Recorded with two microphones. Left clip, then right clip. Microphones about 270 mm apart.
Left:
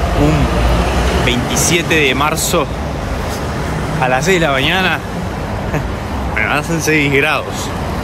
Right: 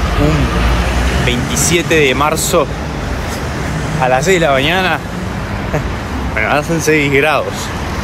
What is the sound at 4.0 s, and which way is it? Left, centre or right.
Speech, centre.